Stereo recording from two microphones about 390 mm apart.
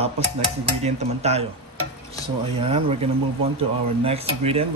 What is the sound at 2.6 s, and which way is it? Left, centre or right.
Speech, centre.